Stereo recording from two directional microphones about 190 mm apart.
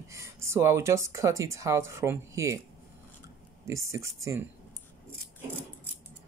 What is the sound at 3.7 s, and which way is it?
Speech, 15° right (ahead or behind).